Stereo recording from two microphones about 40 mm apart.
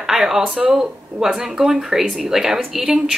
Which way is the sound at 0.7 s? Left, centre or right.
Centre.